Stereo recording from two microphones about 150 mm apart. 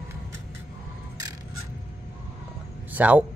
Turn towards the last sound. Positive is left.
turn(degrees=-10)  # may be behind; listen again after turning